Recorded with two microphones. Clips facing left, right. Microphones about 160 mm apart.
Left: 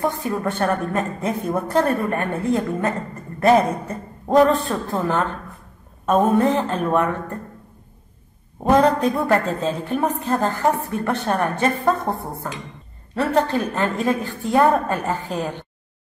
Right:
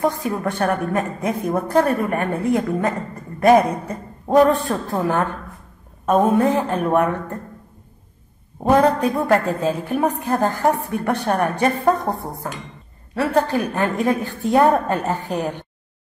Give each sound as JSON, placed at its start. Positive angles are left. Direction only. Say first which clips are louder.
{"t": 0.0, "sound": "a woman's voice", "louder": "right 1 dB", "side_deg": -20}
{"t": 8.6, "sound": "a woman's voice", "louder": "even", "side_deg": -10}